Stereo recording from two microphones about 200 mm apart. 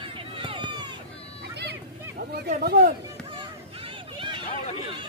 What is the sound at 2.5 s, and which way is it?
Speech, 45° right (ahead or behind).